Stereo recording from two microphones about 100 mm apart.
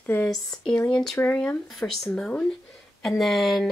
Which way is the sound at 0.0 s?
20° left (ahead or behind).